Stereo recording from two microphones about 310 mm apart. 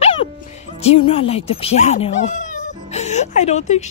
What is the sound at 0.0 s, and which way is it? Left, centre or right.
Music, centre.